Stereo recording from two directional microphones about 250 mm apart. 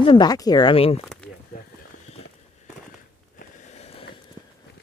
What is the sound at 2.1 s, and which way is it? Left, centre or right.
Walk, left.